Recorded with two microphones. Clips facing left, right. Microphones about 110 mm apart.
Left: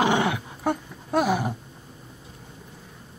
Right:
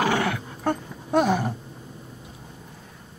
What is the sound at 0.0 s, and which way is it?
Dog, 20° left (ahead or behind).